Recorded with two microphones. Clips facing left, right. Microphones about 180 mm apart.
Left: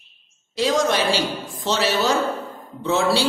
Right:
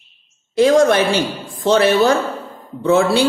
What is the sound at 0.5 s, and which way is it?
A woman's voice, 55° right (ahead or behind).